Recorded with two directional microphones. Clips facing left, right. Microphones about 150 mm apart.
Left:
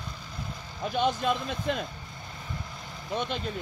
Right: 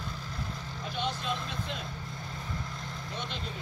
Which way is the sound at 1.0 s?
50° left (ahead or behind).